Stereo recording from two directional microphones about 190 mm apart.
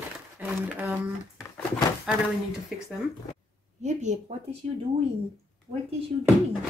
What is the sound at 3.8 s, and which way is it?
Speech, 40° right (ahead or behind).